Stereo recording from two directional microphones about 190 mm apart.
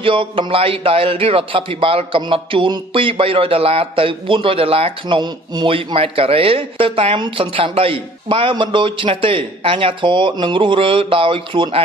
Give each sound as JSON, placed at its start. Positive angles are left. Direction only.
{"t": 0.0, "sound": "a man's voice", "side_deg": -25}